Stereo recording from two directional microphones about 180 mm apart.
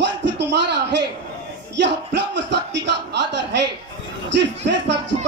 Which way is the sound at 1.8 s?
75° right (ahead or behind).